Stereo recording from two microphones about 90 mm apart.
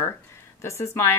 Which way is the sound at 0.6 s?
30° left (ahead or behind).